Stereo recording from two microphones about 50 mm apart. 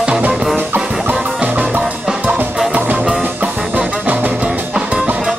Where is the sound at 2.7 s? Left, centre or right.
Right.